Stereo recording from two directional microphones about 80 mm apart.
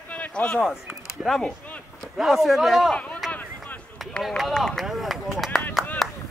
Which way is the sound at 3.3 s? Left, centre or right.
Left.